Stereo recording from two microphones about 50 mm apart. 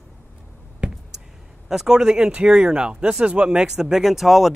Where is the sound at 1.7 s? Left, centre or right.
Centre.